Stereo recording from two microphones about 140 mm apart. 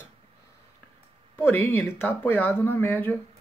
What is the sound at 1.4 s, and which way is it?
Speech, 15° left (ahead or behind).